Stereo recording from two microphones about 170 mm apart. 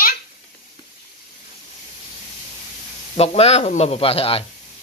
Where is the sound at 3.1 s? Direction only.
40° left (ahead or behind).